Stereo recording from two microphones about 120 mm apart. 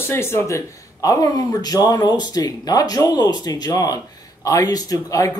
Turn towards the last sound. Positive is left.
turn(degrees=30)  # may be behind; listen again after turning